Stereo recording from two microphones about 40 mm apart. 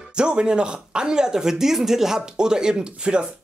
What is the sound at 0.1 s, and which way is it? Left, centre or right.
Speech, right.